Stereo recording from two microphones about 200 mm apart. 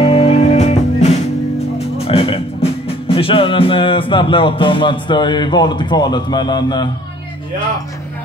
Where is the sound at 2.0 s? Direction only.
30° left (ahead or behind).